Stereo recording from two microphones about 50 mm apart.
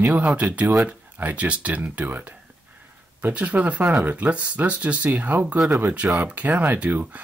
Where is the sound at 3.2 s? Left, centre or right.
Right.